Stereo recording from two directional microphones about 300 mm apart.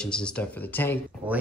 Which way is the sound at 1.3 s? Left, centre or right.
Centre.